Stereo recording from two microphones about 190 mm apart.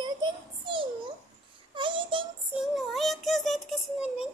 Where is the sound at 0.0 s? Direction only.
25° right (ahead or behind).